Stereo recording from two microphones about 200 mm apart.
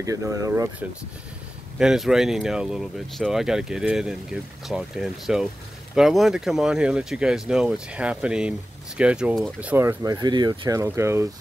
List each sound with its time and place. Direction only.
0.0 s speech: 15° right (ahead or behind)
1.8 s speech: centre (ahead or behind)